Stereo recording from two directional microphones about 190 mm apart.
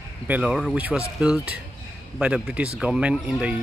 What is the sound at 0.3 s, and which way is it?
Speech, 5° right (ahead or behind).